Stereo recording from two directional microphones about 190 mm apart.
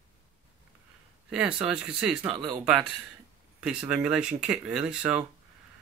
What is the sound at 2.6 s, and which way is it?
Speech, 5° right (ahead or behind).